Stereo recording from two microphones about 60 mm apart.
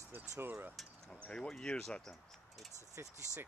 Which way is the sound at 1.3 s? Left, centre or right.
Centre.